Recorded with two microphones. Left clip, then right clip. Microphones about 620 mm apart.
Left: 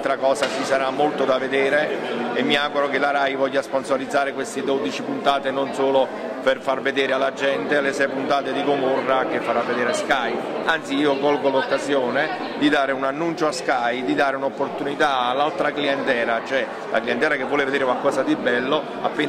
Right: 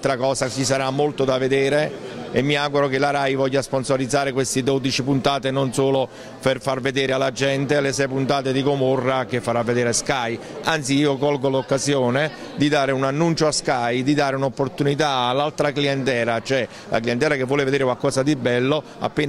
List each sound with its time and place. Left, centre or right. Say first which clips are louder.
0.0 s a man's voice: left 1 dB; right
9.8 s a man's voice: left 1 dB; right